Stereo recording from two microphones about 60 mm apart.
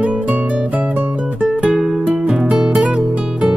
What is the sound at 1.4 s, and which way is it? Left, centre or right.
Music, right.